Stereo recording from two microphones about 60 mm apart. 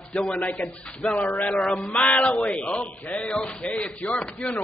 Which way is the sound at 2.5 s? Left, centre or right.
Left.